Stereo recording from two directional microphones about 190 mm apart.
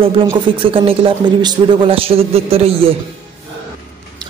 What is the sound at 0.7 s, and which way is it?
A man's voice, 30° right (ahead or behind).